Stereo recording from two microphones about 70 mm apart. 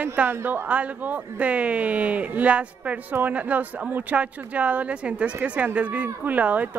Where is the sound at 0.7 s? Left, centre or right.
Centre.